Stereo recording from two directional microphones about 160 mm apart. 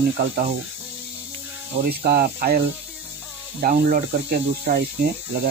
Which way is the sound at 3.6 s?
75° right (ahead or behind).